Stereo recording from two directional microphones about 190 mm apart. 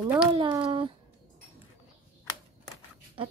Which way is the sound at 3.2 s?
30° right (ahead or behind).